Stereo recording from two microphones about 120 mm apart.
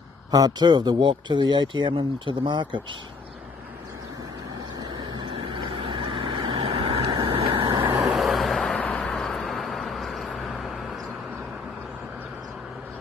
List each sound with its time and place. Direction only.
0.3 s speech: 35° right (ahead or behind)
4.7 s vehicle: 40° right (ahead or behind)
8.0 s vehicle: centre (ahead or behind)